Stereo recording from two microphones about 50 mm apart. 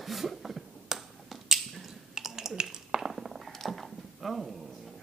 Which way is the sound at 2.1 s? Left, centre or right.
Centre.